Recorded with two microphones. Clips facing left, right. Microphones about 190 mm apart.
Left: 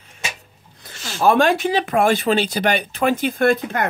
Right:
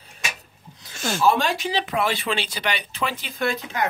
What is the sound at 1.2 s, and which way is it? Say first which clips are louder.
Speech: left 6 dB; 55° left (ahead or behind).